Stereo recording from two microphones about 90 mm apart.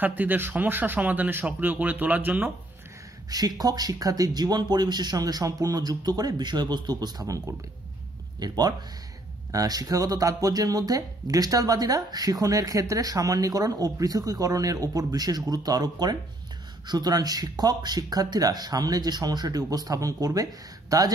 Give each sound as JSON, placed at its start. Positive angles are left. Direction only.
{"t": 0.0, "sound": "speech", "side_deg": -20}
{"t": 3.3, "sound": "speech", "side_deg": -45}
{"t": 8.4, "sound": "speech", "side_deg": -45}